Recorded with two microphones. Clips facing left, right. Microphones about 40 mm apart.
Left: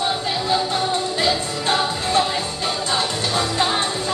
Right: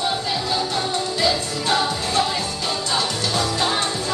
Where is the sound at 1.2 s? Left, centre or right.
Left.